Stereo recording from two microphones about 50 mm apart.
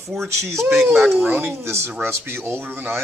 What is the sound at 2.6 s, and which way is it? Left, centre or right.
Speech, right.